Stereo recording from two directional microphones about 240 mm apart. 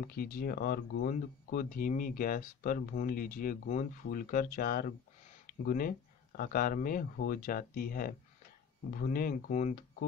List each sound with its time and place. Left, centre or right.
0.0 s speech: left